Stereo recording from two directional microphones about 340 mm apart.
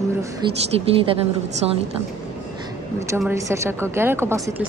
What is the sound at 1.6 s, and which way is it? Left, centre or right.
Speech, centre.